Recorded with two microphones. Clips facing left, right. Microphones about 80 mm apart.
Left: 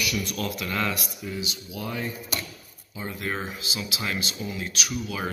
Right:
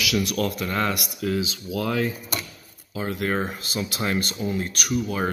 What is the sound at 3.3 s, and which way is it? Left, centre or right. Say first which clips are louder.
Speech: right 5 dB; right.